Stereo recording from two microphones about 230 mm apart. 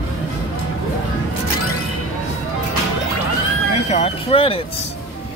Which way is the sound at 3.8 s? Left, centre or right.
Left.